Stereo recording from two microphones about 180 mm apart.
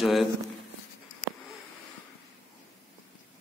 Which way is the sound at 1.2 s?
75° left (ahead or behind).